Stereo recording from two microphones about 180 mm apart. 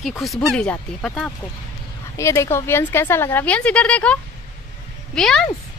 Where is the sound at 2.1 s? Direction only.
15° left (ahead or behind).